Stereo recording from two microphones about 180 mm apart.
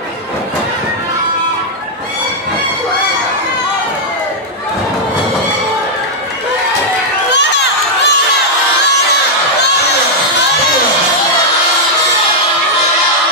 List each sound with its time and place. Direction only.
7.3 s crowd: 75° left (ahead or behind)